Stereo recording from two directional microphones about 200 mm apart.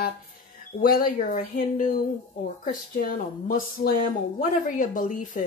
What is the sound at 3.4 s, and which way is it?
A woman's voice, 45° left (ahead or behind).